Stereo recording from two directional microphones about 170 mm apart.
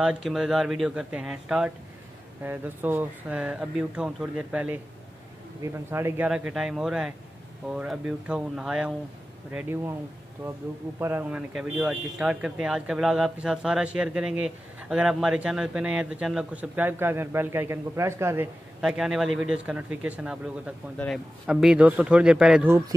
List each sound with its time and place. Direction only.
0.0 s speech: 5° right (ahead or behind)
11.0 s speech: 15° right (ahead or behind)
18.8 s speech: 5° right (ahead or behind)
22.7 s speech: 20° right (ahead or behind)